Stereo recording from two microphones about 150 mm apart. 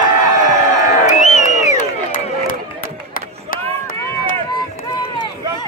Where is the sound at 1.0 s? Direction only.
55° left (ahead or behind).